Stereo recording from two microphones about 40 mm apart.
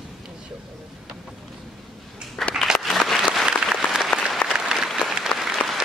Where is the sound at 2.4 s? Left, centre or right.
Centre.